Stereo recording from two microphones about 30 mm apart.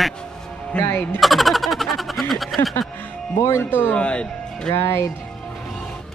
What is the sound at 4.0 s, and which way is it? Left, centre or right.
Speech, left.